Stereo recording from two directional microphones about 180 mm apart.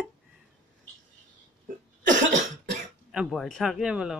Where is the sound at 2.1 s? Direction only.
45° right (ahead or behind).